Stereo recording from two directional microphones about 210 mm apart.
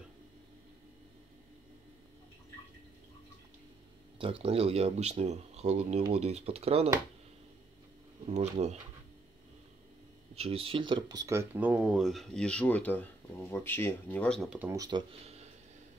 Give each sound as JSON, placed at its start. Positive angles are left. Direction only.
{"t": 4.2, "sound": "speech", "side_deg": -25}
{"t": 8.3, "sound": "speech", "side_deg": -30}
{"t": 10.3, "sound": "speech", "side_deg": -30}
{"t": 14.7, "sound": "speech", "side_deg": -20}